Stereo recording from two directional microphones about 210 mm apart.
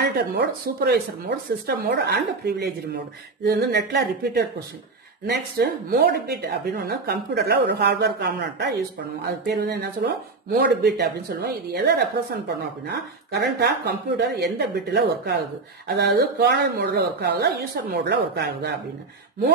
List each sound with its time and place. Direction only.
0.0 s speech: 50° right (ahead or behind)